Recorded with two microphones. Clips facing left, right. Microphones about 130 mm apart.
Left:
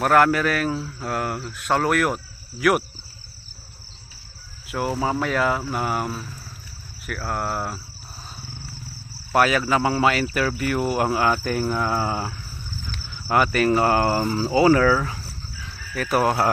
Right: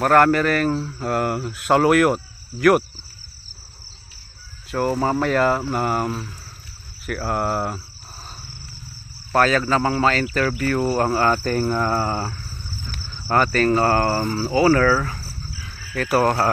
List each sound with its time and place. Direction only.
0.0 s speech: 5° left (ahead or behind)
4.6 s speech: 5° left (ahead or behind)
9.3 s speech: 15° left (ahead or behind)
16.2 s speech: 10° left (ahead or behind)